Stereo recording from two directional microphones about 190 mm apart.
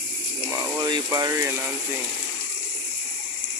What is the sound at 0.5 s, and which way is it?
Speech, 20° right (ahead or behind).